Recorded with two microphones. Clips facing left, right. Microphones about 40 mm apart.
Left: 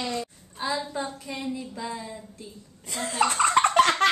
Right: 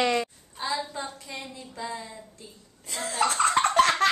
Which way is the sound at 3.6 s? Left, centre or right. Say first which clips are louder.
Left 4 dB; left.